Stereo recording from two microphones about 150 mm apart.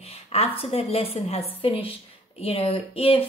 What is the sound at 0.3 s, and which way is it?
A woman's voice, 40° left (ahead or behind).